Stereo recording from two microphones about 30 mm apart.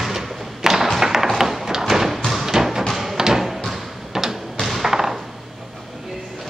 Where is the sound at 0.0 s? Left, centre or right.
Centre.